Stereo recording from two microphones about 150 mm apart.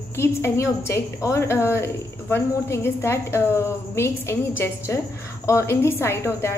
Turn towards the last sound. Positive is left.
turn(degrees=15)  # may be behind; listen again after turning